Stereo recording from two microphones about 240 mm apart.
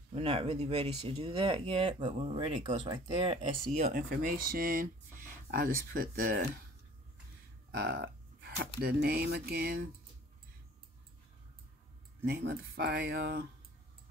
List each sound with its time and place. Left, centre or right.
0.1 s speech: right
3.9 s speech: right
7.7 s speech: right
12.3 s speech: right